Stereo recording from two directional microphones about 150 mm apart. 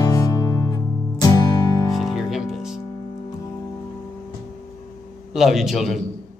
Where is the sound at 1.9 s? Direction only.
Centre (ahead or behind).